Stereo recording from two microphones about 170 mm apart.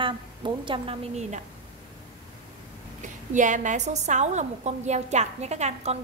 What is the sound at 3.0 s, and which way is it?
A woman's voice, 45° right (ahead or behind).